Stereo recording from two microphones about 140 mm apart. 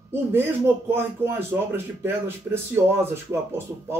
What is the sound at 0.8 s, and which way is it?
Speech, 15° right (ahead or behind).